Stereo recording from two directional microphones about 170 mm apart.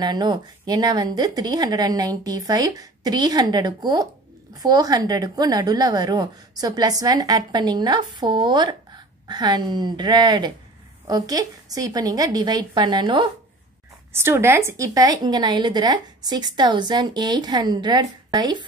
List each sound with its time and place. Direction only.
0.0 s a woman's voice: 25° right (ahead or behind)
14.1 s a woman's voice: 15° right (ahead or behind)